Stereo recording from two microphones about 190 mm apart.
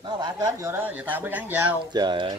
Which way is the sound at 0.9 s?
10° right (ahead or behind).